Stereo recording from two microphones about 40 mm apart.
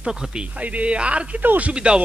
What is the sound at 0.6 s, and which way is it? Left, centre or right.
Speech, right.